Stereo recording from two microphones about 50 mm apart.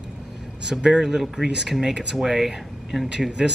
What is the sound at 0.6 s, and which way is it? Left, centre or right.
Speech, centre.